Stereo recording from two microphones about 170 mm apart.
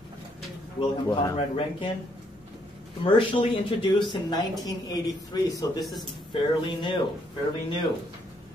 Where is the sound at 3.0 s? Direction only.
30° left (ahead or behind).